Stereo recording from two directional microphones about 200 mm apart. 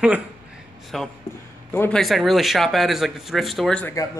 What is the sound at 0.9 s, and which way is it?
Speech, centre (ahead or behind).